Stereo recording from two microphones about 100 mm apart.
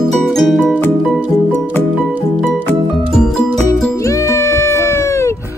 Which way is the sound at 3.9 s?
30° left (ahead or behind).